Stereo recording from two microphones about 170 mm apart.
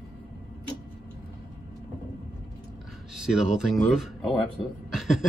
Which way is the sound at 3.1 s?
5° right (ahead or behind).